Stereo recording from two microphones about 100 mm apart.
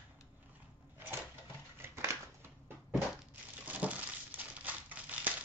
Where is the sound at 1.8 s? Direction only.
25° right (ahead or behind).